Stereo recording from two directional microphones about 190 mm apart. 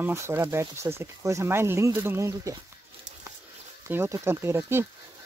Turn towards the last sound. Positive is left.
turn(degrees=-15)  # may be behind; listen again after turning